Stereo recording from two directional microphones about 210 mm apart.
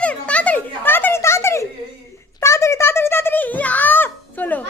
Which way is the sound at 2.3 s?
15° left (ahead or behind).